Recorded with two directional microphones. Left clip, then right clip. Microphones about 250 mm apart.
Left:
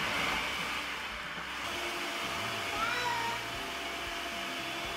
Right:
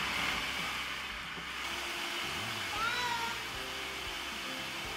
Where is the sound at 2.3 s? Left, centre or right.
Centre.